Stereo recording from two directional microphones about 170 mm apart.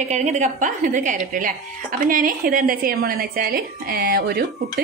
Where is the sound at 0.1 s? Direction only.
45° right (ahead or behind).